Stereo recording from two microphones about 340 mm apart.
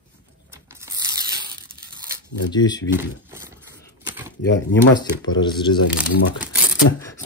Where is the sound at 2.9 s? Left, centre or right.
Centre.